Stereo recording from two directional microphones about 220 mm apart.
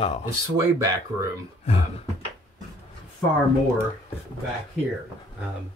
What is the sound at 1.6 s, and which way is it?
Speech, 30° left (ahead or behind).